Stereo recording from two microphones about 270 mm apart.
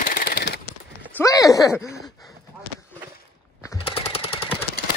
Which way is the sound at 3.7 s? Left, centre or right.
Left.